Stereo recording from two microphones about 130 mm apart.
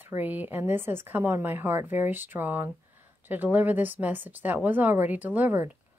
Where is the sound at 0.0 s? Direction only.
15° right (ahead or behind).